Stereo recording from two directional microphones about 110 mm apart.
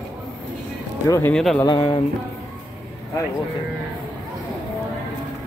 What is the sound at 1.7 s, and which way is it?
Music, 40° left (ahead or behind).